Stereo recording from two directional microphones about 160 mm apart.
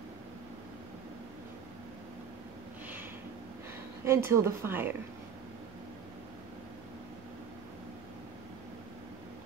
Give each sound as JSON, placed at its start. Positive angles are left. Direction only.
{"t": 4.0, "sound": "a woman's voice", "side_deg": -15}